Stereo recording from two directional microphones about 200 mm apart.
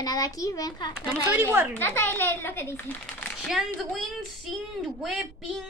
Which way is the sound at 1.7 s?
10° left (ahead or behind).